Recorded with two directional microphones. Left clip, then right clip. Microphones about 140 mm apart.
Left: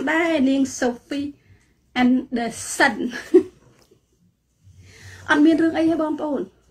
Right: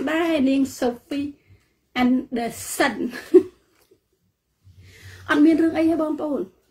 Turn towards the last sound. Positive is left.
turn(degrees=-25)  # may be behind; listen again after turning